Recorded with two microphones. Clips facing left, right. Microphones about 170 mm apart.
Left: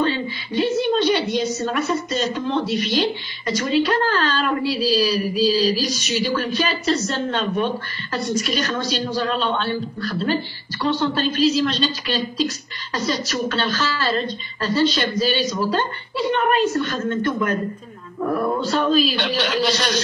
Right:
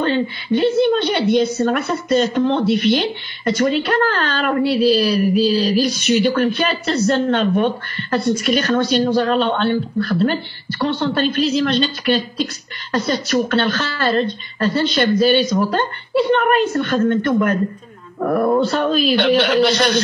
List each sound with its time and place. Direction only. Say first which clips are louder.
0.0 s a woman's voice: right 3 dB; 60° right (ahead or behind)